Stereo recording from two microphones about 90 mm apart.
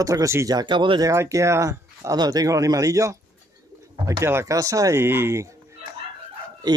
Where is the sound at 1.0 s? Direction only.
35° right (ahead or behind).